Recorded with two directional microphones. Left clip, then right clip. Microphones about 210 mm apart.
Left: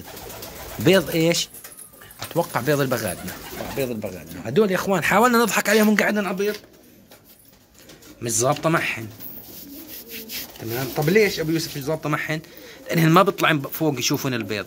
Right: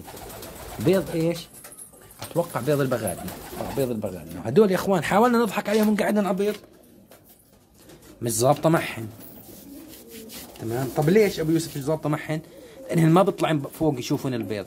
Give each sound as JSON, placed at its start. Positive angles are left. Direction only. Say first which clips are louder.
{"t": 0.8, "sound": "speech", "louder": "left 5 dB", "side_deg": 5}
{"t": 3.9, "sound": "speech", "louder": "even", "side_deg": -25}
{"t": 4.7, "sound": "speech", "louder": "left 2 dB", "side_deg": -10}
{"t": 6.0, "sound": "speech", "louder": "left 1 dB", "side_deg": -20}
{"t": 8.2, "sound": "speech", "louder": "right 1 dB", "side_deg": -20}
{"t": 10.6, "sound": "speech", "louder": "even", "side_deg": -15}